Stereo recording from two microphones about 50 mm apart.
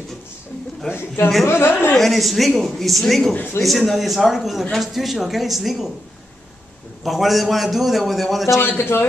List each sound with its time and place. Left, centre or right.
0.9 s speech: left
2.0 s a man's voice: centre
7.0 s a man's voice: centre
8.5 s speech: left